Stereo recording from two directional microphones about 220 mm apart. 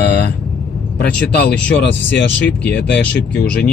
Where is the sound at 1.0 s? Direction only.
45° left (ahead or behind).